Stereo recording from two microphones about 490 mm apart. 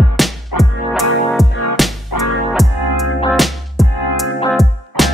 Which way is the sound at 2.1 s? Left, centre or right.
Left.